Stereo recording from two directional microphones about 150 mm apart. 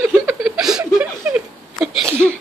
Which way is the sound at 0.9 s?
10° right (ahead or behind).